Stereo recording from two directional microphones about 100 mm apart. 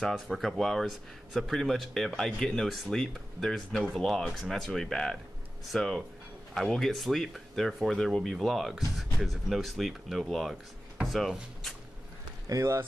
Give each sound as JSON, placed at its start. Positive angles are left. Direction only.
{"t": 0.0, "sound": "speech", "side_deg": 5}
{"t": 12.4, "sound": "speech", "side_deg": -30}